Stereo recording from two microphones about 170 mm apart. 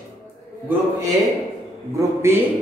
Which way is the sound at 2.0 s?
15° right (ahead or behind).